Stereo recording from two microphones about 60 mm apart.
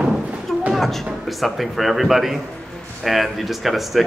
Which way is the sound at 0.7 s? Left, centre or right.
Centre.